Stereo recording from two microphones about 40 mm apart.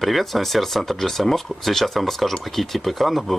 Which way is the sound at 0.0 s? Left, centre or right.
Centre.